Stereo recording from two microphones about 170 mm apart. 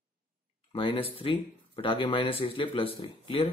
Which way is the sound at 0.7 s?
30° left (ahead or behind).